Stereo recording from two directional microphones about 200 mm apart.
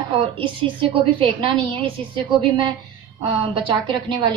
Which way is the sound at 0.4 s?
25° right (ahead or behind).